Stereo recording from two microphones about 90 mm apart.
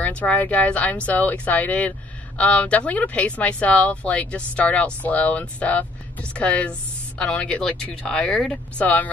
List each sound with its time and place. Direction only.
0.0 s speech: 15° left (ahead or behind)